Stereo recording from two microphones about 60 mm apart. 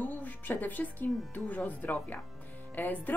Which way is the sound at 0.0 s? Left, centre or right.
Left.